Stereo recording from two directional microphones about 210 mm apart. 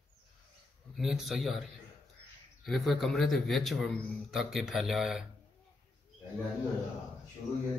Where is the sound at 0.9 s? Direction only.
Centre (ahead or behind).